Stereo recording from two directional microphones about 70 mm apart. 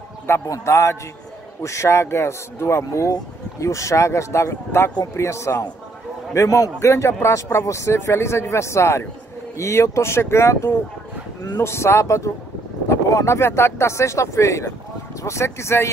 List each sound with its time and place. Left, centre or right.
0.5 s a man's voice: left
2.8 s a man's voice: left